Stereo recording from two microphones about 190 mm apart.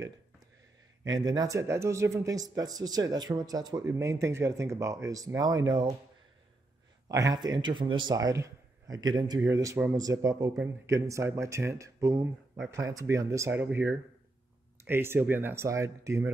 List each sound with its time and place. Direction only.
1.0 s a man's voice: 20° right (ahead or behind)
7.1 s a man's voice: 20° right (ahead or behind)